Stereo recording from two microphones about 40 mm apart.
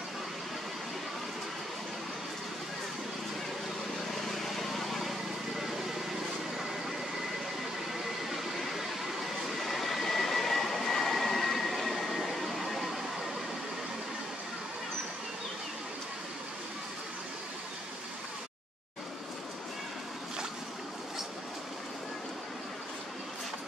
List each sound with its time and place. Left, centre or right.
4.1 s vehicle: centre
8.3 s vehicle: centre